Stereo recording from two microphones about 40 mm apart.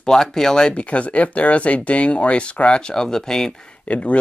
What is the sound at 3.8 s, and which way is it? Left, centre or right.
Speech, left.